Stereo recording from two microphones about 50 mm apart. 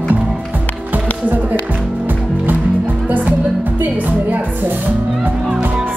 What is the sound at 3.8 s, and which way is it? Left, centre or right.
Music, right.